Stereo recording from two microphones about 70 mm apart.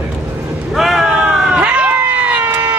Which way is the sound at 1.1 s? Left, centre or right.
Centre.